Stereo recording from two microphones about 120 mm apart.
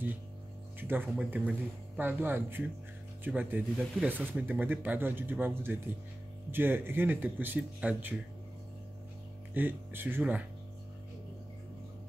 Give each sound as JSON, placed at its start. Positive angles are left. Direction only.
{"t": 0.7, "sound": "a sound", "side_deg": -15}
{"t": 1.1, "sound": "speech", "side_deg": -10}
{"t": 9.5, "sound": "speech", "side_deg": -15}